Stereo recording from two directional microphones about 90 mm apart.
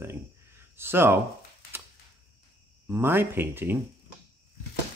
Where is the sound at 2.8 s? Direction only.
25° right (ahead or behind).